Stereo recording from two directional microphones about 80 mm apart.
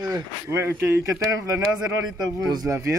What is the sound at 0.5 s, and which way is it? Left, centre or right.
Speech, right.